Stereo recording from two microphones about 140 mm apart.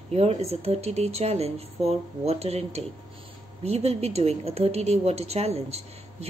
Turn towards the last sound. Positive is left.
turn(degrees=-50)  # may be behind; listen again after turning